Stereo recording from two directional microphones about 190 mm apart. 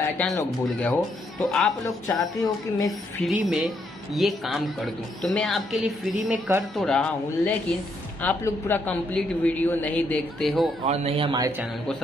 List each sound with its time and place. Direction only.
0.4 s a man's voice: 5° left (ahead or behind)
2.1 s speech: 20° left (ahead or behind)
3.3 s a woman's voice: 5° right (ahead or behind)
10.9 s a man's voice: 30° right (ahead or behind)